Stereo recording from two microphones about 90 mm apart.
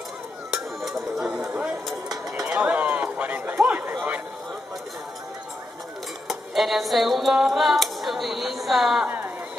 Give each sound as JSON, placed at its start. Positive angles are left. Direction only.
{"t": 0.5, "sound": "music", "side_deg": -5}
{"t": 1.4, "sound": "a sound", "side_deg": -20}
{"t": 6.2, "sound": "music", "side_deg": 0}
{"t": 8.6, "sound": "a woman's voice", "side_deg": -5}